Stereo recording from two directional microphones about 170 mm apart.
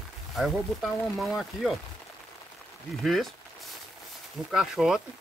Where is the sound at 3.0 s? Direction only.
Centre (ahead or behind).